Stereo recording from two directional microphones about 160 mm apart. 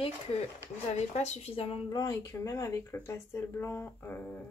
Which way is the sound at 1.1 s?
45° left (ahead or behind).